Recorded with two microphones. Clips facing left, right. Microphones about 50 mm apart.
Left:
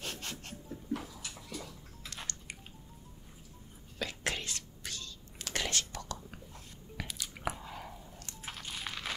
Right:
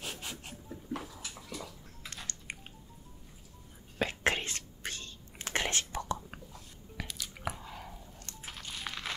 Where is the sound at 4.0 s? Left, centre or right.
Right.